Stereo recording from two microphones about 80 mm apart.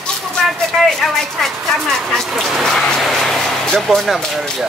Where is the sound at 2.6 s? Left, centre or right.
Centre.